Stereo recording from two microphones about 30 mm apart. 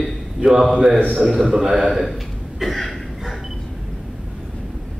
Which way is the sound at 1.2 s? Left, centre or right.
Centre.